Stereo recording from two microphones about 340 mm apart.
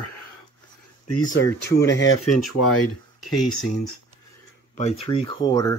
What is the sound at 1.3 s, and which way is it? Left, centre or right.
Speech, left.